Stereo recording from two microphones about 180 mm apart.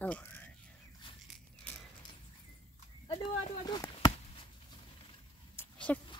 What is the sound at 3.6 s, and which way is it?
Chop, 25° left (ahead or behind).